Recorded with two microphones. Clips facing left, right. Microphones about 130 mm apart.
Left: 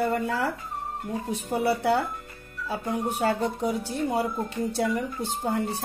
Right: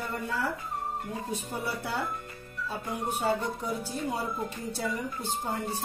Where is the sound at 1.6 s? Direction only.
65° left (ahead or behind).